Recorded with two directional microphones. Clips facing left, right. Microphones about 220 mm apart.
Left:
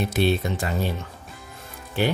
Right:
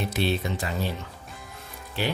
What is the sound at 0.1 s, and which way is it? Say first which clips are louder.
Speech: left 4 dB; 50° left (ahead or behind).